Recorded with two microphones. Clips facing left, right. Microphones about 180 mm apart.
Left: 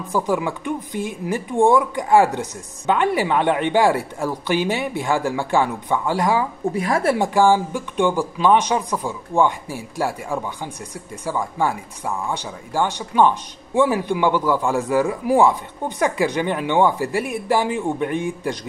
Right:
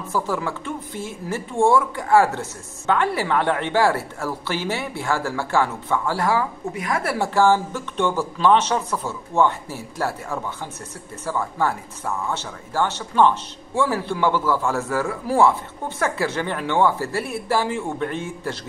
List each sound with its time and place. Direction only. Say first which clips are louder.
0.1 s speech: left 4 dB; 15° left (ahead or behind)
6.7 s speech: left 7 dB; 30° left (ahead or behind); by 18.6 s 15° left (ahead or behind)